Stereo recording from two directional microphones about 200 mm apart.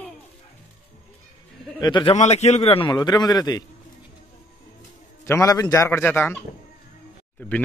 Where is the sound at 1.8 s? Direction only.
20° left (ahead or behind).